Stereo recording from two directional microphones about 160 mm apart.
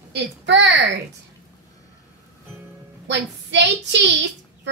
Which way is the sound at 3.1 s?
90° right.